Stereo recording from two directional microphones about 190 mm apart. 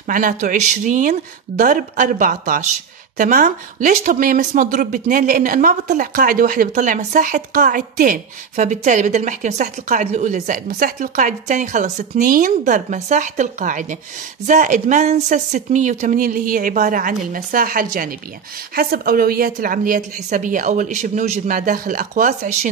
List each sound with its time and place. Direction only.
0.0 s speech: 45° right (ahead or behind)